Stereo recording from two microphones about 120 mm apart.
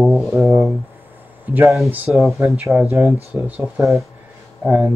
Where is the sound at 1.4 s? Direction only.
15° right (ahead or behind).